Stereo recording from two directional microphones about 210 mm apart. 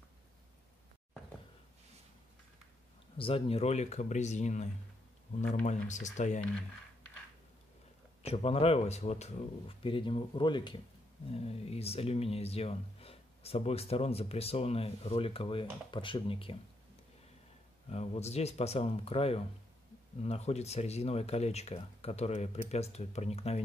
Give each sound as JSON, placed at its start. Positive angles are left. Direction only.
{"t": 3.2, "sound": "speech", "side_deg": 25}
{"t": 8.2, "sound": "speech", "side_deg": 30}
{"t": 17.8, "sound": "speech", "side_deg": 30}